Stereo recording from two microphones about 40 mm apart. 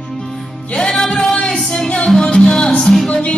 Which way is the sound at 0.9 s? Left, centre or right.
Centre.